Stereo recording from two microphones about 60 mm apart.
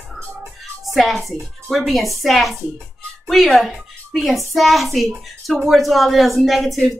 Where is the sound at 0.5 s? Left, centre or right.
Centre.